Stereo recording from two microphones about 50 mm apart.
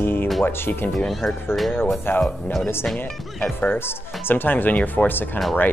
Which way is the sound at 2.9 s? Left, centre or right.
Left.